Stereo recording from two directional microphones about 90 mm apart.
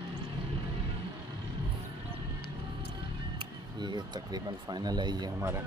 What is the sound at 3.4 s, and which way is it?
Speech, 60° right (ahead or behind).